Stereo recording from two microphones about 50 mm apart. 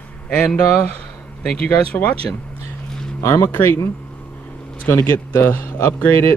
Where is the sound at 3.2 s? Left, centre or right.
Left.